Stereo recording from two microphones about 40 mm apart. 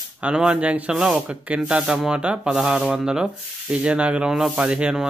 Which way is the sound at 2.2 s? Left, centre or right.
Right.